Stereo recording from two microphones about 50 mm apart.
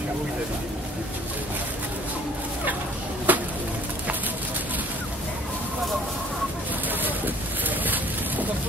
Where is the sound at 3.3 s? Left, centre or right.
Right.